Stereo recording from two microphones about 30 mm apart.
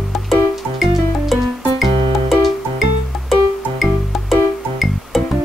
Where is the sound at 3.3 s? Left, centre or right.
Centre.